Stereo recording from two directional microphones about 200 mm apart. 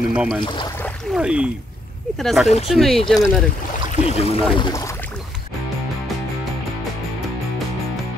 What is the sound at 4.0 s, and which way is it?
Speech, 25° right (ahead or behind).